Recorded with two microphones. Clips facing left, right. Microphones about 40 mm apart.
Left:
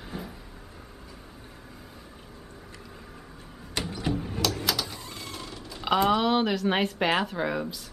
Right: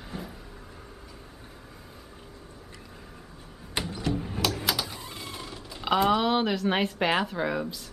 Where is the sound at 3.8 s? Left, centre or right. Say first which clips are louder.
Even; centre.